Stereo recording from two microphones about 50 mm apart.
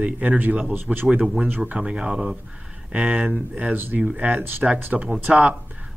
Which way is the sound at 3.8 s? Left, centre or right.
Right.